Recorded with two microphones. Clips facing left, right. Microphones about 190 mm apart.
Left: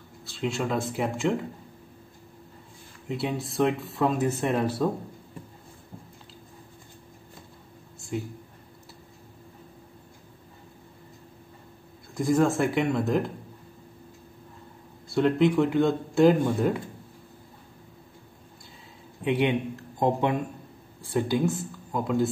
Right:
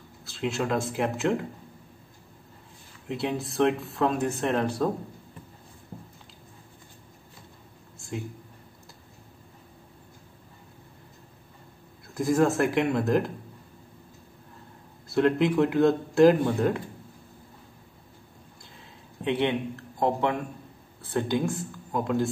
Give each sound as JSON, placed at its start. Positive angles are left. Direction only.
{"t": 0.2, "sound": "speech", "side_deg": 0}
{"t": 3.1, "sound": "speech", "side_deg": 0}
{"t": 8.0, "sound": "a sound", "side_deg": 0}
{"t": 12.1, "sound": "speech", "side_deg": 0}
{"t": 15.0, "sound": "speech", "side_deg": 0}
{"t": 19.2, "sound": "a man's voice", "side_deg": 15}